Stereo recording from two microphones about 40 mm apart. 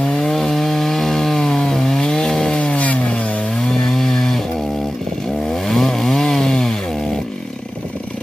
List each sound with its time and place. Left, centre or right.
0.1 s chainsaw: centre
2.8 s a sound: left
3.1 s chainsaw: left
3.5 s chainsaw: centre
5.5 s chainsaw: centre